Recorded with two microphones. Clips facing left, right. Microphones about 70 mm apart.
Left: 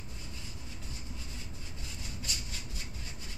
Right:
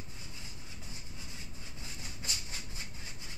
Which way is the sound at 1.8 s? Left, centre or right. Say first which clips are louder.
Left 1 dB; right.